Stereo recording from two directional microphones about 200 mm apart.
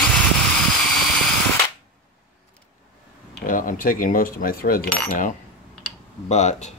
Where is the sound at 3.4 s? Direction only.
45° left (ahead or behind).